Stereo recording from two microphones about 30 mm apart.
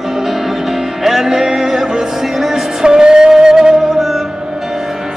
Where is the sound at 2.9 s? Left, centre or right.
Right; by 4.3 s centre.